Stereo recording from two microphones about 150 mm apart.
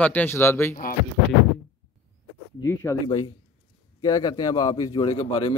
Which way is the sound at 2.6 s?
25° left (ahead or behind).